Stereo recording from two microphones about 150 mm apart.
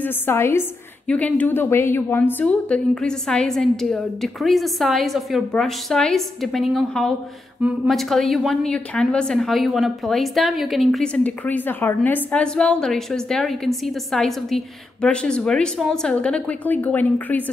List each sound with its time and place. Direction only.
0.0 s a woman's voice: 15° left (ahead or behind)